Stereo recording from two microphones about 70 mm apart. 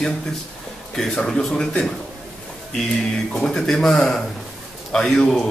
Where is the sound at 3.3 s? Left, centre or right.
Centre.